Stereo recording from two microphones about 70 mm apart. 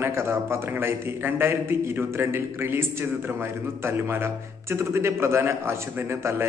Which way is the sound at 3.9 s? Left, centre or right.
Right.